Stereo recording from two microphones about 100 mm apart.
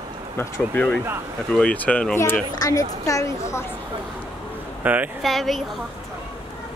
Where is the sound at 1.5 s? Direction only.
15° left (ahead or behind).